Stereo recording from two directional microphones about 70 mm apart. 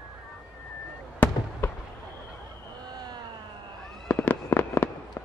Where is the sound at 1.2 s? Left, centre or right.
Left.